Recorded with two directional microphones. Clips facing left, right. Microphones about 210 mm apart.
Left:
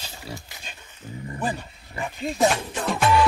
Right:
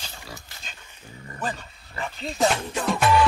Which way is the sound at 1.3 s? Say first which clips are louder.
Left 2 dB; 15° left (ahead or behind).